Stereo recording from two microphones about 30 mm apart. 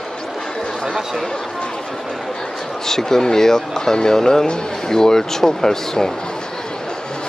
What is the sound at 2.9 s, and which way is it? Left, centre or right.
Speech, centre.